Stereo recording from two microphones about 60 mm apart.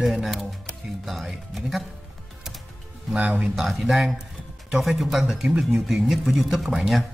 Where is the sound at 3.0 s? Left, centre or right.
Centre.